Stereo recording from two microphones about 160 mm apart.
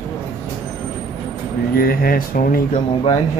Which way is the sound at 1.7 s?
65° left (ahead or behind).